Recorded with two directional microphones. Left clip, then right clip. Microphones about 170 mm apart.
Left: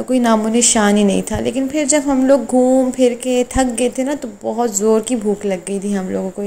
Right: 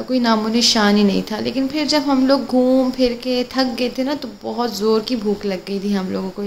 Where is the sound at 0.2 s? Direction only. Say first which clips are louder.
Left 1 dB; 15° left (ahead or behind).